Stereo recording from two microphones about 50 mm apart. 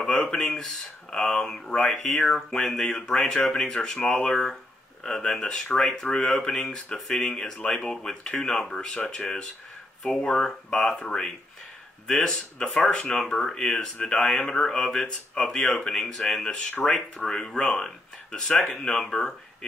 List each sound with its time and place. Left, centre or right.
0.4 s speech: centre
12.9 s speech: left
13.2 s speech: centre